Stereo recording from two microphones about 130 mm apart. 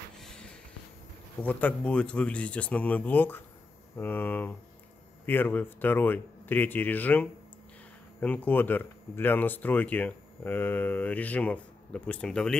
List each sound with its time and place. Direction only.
1.4 s speech: 10° left (ahead or behind)